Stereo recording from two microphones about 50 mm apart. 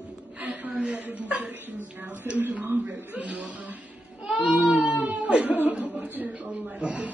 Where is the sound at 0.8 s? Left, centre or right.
Right.